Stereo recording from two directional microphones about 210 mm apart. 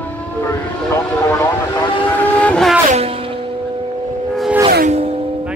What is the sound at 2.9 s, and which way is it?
Music, 30° right (ahead or behind).